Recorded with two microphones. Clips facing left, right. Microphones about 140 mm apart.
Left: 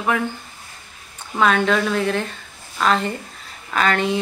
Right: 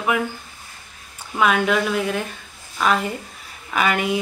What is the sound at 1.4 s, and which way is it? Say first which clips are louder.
A woman's voice: left 1 dB; 10° right (ahead or behind).